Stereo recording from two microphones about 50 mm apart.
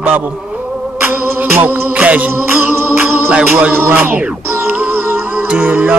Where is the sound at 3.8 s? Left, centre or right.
Right.